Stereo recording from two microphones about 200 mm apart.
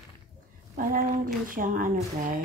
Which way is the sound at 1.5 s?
45° right (ahead or behind).